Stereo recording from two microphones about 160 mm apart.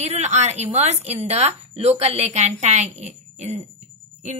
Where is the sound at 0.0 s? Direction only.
45° right (ahead or behind).